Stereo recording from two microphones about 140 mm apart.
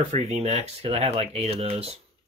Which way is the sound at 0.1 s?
50° right (ahead or behind).